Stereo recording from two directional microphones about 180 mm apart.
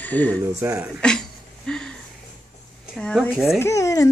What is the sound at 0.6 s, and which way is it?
Speech, 15° right (ahead or behind).